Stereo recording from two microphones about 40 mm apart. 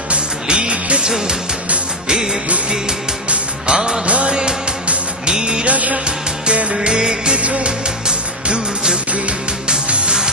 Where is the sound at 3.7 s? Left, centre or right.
Centre.